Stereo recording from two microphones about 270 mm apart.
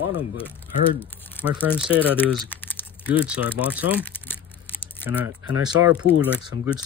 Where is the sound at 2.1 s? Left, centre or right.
Centre.